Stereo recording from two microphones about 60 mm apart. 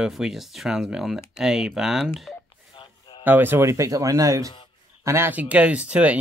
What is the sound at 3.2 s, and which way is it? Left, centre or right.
Speech, right.